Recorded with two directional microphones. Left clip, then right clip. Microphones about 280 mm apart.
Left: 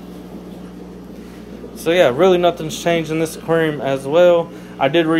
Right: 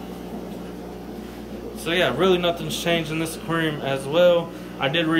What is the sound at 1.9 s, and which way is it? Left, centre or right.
Speech, centre.